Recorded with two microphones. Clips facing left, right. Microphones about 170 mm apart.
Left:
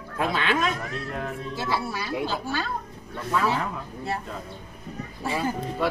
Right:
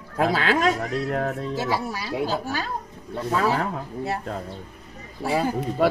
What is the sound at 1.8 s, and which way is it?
Speech, 40° right (ahead or behind).